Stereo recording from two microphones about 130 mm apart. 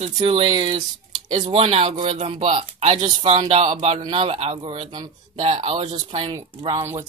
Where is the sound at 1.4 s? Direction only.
50° right (ahead or behind).